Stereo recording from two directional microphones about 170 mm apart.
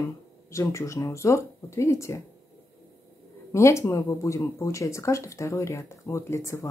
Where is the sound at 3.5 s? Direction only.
15° left (ahead or behind).